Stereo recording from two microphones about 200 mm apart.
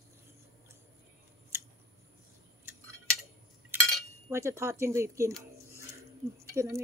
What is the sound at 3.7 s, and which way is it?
Cutlery, 10° right (ahead or behind).